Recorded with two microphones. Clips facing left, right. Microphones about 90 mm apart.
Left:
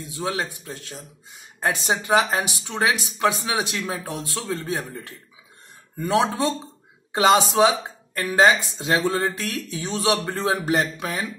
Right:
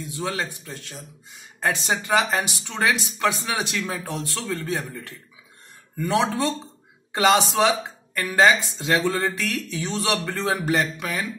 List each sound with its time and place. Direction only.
0.0 s speech: 20° left (ahead or behind)
6.1 s speech: 20° left (ahead or behind)